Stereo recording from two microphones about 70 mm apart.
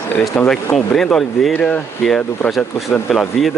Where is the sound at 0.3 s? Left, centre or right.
Centre.